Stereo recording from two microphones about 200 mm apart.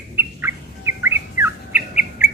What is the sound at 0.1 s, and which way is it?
Bird, 10° right (ahead or behind).